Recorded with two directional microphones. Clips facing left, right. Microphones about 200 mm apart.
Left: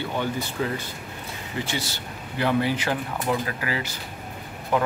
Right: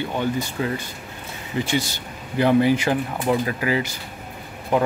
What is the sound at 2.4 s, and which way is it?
Speech, 15° right (ahead or behind).